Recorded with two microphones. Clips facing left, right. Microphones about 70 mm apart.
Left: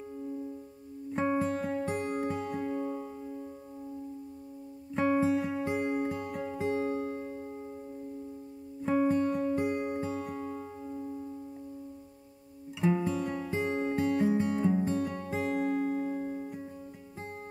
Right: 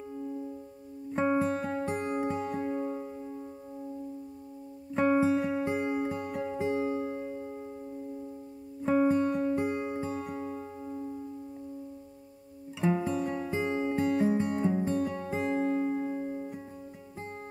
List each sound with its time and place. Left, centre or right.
1.1 s music: centre
1.5 s music: right
2.1 s music: centre
5.1 s music: centre
7.2 s music: centre
8.8 s music: centre
9.5 s music: centre
9.9 s music: centre
12.8 s music: centre
15.1 s music: centre